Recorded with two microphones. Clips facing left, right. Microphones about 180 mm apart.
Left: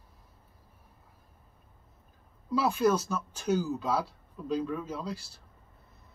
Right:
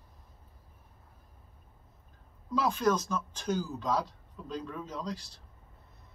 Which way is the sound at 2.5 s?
5° left (ahead or behind).